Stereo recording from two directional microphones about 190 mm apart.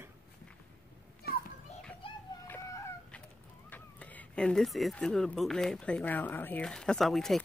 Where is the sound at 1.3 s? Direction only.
55° left (ahead or behind).